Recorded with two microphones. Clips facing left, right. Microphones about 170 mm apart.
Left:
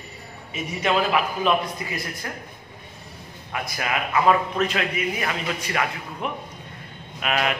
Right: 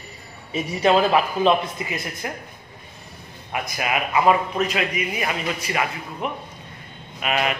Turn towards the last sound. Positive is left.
turn(degrees=-5)  # may be behind; listen again after turning